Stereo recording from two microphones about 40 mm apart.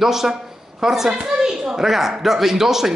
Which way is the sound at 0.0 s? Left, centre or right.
Centre.